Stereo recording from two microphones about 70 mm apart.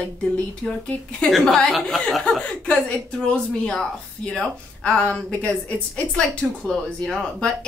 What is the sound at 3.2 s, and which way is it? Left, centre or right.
A woman's voice, centre.